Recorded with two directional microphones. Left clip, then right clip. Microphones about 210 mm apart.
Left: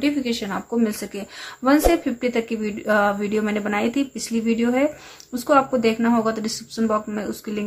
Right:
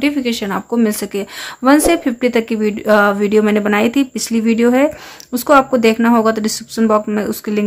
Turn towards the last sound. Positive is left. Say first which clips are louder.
# right 9 dB
turn(degrees=-25)  # may be behind; listen again after turning